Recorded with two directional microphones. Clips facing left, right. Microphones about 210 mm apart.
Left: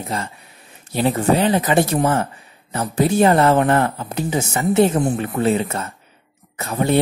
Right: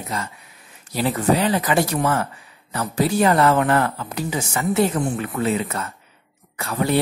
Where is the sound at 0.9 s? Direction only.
25° left (ahead or behind).